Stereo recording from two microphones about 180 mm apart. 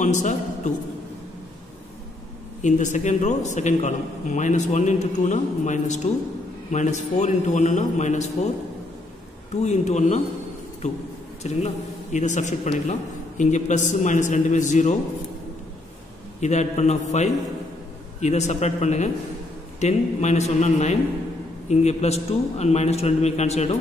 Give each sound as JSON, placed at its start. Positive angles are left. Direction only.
{"t": 0.0, "sound": "a man's voice", "side_deg": 40}
{"t": 2.6, "sound": "a man's voice", "side_deg": 40}
{"t": 9.6, "sound": "a man's voice", "side_deg": 40}
{"t": 11.4, "sound": "a man's voice", "side_deg": 40}
{"t": 16.3, "sound": "a man's voice", "side_deg": 40}